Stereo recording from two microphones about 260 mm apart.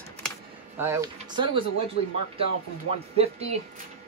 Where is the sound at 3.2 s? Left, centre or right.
Right.